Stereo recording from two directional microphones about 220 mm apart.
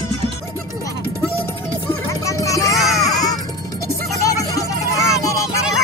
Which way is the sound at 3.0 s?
15° left (ahead or behind).